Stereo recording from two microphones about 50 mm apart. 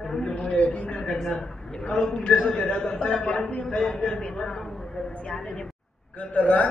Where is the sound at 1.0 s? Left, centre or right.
Centre.